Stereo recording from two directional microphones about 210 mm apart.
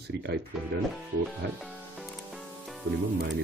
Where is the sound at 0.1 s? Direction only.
55° right (ahead or behind).